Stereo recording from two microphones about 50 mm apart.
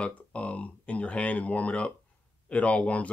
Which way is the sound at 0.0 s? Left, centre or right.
Left.